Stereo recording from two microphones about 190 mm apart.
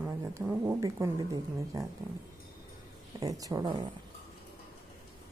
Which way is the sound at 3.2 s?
20° right (ahead or behind).